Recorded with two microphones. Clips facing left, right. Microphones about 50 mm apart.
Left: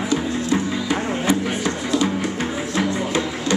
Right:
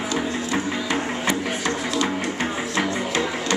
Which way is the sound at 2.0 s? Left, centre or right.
Centre.